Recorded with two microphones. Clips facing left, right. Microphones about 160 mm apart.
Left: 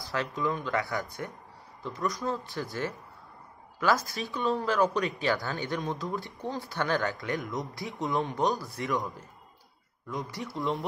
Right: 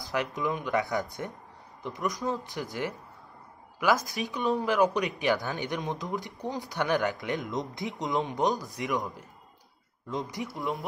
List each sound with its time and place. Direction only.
0.0 s speech: 15° right (ahead or behind)